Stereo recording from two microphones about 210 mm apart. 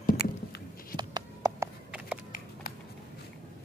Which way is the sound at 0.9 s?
20° right (ahead or behind).